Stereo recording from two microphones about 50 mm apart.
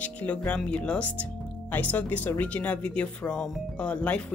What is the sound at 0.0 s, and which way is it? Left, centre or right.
Music, left.